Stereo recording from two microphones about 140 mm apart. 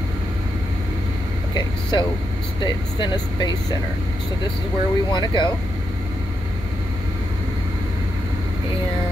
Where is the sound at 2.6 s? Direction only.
30° left (ahead or behind).